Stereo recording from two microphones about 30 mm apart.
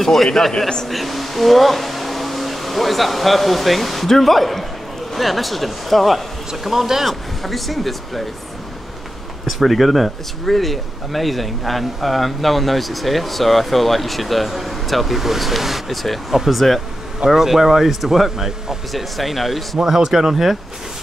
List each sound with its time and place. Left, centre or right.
0.0 s a man's voice: centre
7.1 s speech: centre
9.5 s speech: centre
17.4 s speech: centre
19.8 s speech: centre